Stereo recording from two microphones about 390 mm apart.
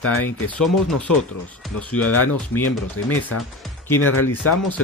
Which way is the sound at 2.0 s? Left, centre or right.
Left.